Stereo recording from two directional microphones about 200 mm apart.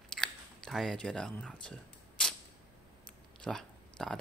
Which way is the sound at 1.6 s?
5° left (ahead or behind).